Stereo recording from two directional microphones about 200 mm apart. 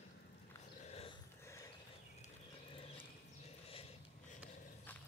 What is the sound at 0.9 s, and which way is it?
Dog, 30° left (ahead or behind).